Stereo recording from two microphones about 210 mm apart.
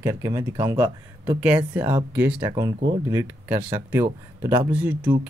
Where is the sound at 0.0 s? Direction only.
15° right (ahead or behind).